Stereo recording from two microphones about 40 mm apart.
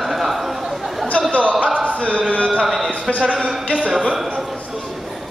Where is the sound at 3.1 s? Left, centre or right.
Right.